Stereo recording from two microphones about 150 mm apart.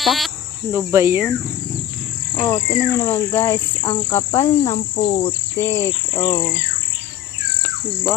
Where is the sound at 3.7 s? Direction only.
25° left (ahead or behind).